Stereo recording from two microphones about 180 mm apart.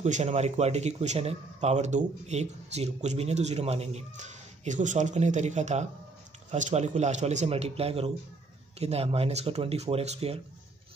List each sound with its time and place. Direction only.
0.0 s speech: 35° right (ahead or behind)